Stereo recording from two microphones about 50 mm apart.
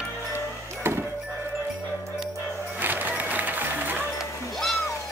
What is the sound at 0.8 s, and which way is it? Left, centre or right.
Music, right.